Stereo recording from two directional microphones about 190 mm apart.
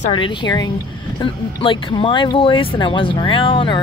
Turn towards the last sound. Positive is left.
turn(degrees=25)  # may be behind; listen again after turning